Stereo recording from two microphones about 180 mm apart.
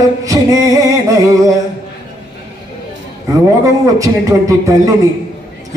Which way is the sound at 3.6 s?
20° right (ahead or behind).